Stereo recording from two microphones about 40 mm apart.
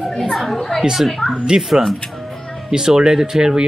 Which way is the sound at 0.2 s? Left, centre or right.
Centre.